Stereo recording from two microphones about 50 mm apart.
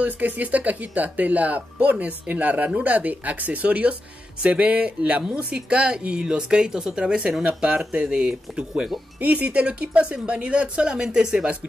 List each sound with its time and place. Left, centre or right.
0.0 s speech: right; by 8.9 s centre
9.2 s speech: right; by 11.5 s centre